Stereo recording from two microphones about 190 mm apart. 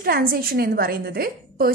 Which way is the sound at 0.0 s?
50° right (ahead or behind).